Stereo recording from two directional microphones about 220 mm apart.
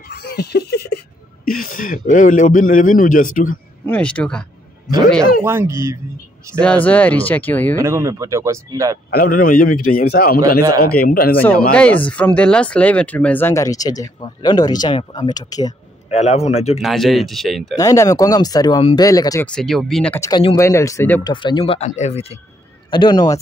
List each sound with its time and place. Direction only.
0.1 s a man's voice: 45° left (ahead or behind)
3.8 s speech: 5° left (ahead or behind)
5.4 s speech: 10° right (ahead or behind)
6.6 s speech: 5° left (ahead or behind)
7.7 s speech: 15° right (ahead or behind)
9.1 s a man's voice: 40° left (ahead or behind)
11.7 s speech: 5° left (ahead or behind)
16.1 s speech: 30° left (ahead or behind)
16.8 s speech: centre (ahead or behind)
17.7 s speech: 15° left (ahead or behind)
19.5 s speech: centre (ahead or behind)
20.2 s speech: 20° left (ahead or behind)